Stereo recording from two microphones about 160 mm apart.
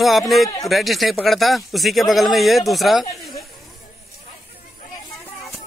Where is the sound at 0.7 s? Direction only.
Centre (ahead or behind).